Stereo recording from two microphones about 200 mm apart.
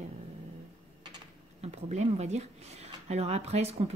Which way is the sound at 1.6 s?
35° right (ahead or behind).